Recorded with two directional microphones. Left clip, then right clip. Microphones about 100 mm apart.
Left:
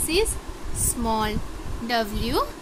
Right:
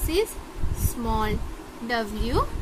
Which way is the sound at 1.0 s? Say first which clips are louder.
Left 2 dB; 25° left (ahead or behind).